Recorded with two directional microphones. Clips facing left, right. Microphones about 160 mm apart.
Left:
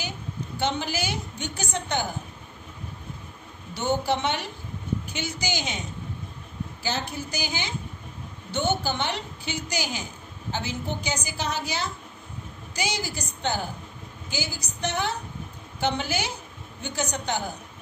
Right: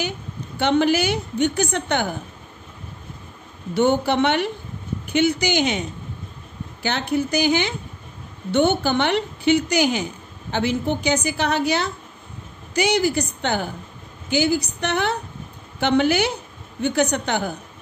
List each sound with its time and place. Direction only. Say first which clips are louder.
0.6 s a woman's voice: right 10 dB; 65° right (ahead or behind)
3.7 s a woman's voice: right 7 dB; 65° right (ahead or behind)